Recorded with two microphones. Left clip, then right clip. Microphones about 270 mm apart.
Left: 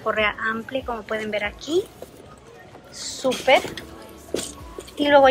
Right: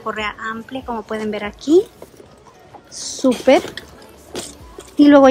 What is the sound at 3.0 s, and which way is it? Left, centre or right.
Speech, right.